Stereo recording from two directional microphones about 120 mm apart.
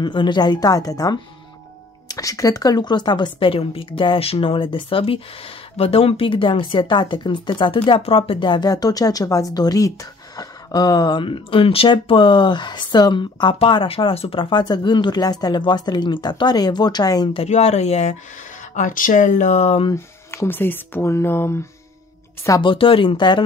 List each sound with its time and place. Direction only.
0.0 s speech: 40° left (ahead or behind)
17.5 s speech: 65° left (ahead or behind)
18.8 s speech: 90° left; by 19.9 s 65° left (ahead or behind)
19.9 s speech: 20° left (ahead or behind)
22.6 s speech: 45° left (ahead or behind)